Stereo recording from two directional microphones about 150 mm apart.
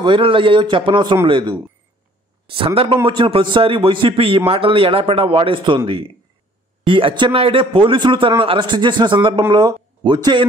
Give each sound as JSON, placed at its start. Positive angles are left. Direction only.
{"t": 0.0, "sound": "a man's voice", "side_deg": -35}
{"t": 6.9, "sound": "a man's voice", "side_deg": -35}